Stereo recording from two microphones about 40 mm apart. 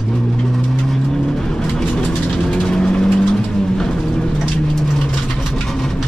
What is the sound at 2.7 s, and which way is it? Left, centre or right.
Vehicle, left.